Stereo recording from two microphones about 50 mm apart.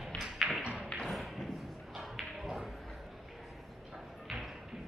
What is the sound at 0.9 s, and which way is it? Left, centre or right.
Thump, centre.